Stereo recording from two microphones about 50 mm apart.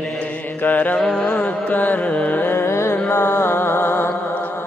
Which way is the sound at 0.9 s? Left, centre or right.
Centre.